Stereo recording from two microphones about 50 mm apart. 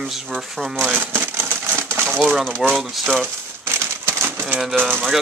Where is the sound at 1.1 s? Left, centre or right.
Right.